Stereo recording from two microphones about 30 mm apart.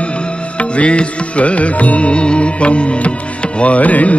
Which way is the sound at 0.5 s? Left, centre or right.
Left.